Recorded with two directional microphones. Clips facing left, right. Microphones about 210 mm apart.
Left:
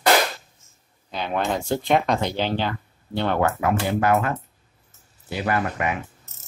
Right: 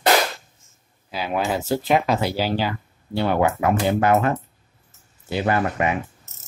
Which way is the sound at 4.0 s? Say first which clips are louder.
Right 2 dB; 25° right (ahead or behind).